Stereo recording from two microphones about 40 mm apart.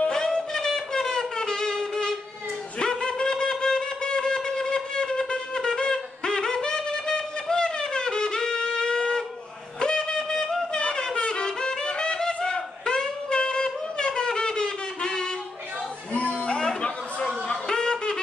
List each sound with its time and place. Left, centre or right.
0.1 s music: centre
2.8 s wind instrument: centre
11.1 s music: left
16.2 s a sound: left